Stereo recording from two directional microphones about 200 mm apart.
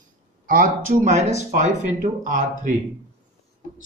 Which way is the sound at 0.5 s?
45° right (ahead or behind).